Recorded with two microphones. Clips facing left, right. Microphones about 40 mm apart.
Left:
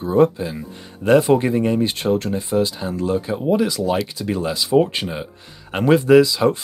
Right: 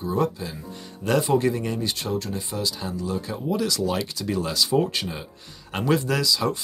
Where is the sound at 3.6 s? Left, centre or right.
Left.